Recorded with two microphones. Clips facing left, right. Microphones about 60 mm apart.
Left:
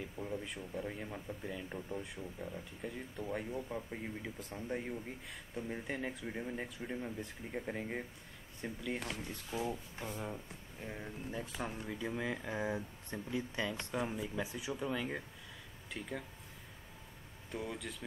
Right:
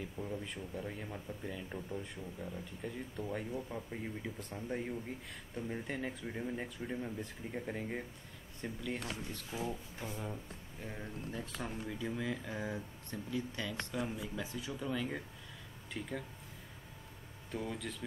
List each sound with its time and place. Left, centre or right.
0.0 s speech: centre
17.5 s speech: centre